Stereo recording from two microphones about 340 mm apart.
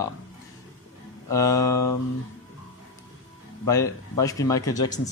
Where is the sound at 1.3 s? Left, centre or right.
Centre.